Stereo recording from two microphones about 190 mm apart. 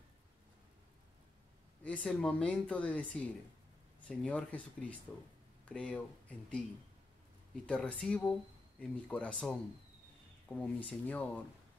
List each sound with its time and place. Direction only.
1.9 s speech: 5° left (ahead or behind)
7.6 s speech: 5° left (ahead or behind)